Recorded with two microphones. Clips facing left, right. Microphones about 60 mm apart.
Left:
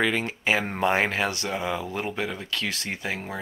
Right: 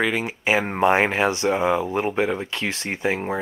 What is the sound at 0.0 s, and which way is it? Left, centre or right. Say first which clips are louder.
Speech: right 2 dB; centre.